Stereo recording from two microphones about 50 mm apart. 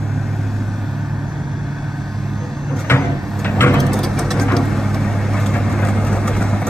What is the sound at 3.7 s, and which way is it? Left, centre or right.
Vehicle, centre.